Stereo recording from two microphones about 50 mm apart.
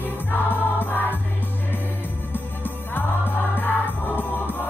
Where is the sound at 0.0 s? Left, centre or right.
Left.